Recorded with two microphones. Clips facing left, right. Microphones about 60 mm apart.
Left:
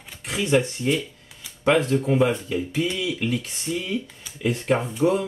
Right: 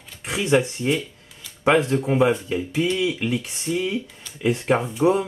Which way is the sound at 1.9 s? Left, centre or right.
Centre.